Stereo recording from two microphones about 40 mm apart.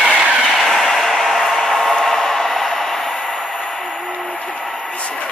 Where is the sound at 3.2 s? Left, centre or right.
Centre.